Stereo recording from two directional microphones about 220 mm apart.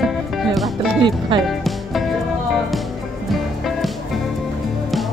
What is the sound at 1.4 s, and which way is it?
Music, centre (ahead or behind).